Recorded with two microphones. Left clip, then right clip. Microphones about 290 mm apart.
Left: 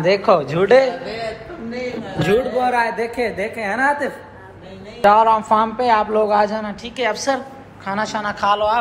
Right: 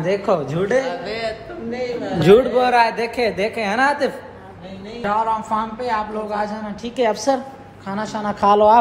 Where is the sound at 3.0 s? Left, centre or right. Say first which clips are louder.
Right 1 dB; centre.